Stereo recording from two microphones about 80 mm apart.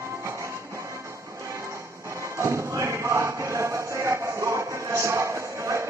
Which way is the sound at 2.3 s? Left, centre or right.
Right.